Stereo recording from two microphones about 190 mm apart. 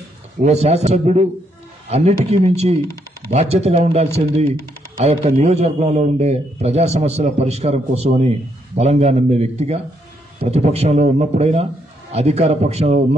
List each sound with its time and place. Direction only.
0.4 s a man's voice: 35° right (ahead or behind)